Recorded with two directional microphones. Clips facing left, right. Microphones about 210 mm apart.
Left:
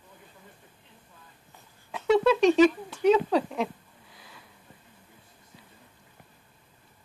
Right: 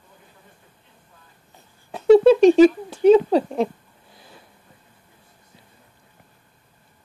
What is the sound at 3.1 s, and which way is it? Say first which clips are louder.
Speech: right 8 dB; 35° right (ahead or behind).